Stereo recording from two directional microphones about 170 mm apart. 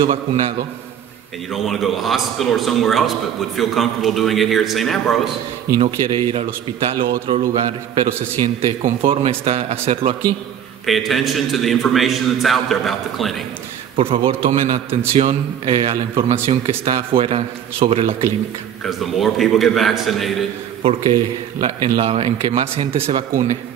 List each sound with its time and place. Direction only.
0.0 s a man's voice: 30° right (ahead or behind)
1.5 s a man's voice: centre (ahead or behind)
5.8 s a man's voice: 30° right (ahead or behind)
10.9 s a man's voice: centre (ahead or behind)
13.9 s a man's voice: 35° right (ahead or behind)
18.9 s a man's voice: centre (ahead or behind)
20.8 s a man's voice: 30° right (ahead or behind)